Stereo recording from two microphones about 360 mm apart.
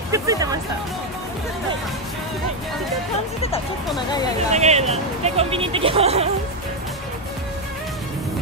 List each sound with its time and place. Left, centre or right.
0.1 s speech: centre
4.5 s speech: centre